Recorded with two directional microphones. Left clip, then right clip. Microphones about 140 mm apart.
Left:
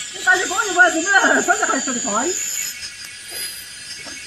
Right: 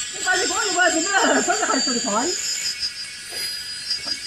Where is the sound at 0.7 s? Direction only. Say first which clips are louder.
Left 6 dB; 35° right (ahead or behind).